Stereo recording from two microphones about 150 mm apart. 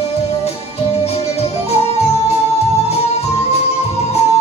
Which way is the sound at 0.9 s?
45° left (ahead or behind).